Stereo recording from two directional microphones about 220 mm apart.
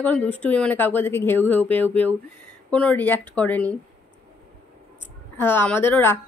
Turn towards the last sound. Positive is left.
turn(degrees=10)  # may be behind; listen again after turning